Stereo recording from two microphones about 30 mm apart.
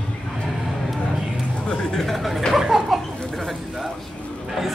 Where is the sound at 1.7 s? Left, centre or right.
Left.